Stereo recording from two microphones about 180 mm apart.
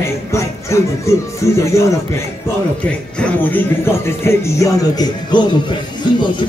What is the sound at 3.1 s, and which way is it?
Speech, 10° left (ahead or behind).